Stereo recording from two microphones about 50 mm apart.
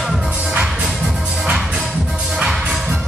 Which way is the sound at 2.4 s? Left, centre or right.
Centre.